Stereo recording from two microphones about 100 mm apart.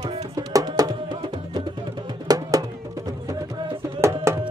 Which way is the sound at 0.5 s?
40° right (ahead or behind).